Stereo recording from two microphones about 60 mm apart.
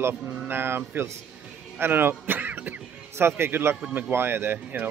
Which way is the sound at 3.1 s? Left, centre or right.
Right.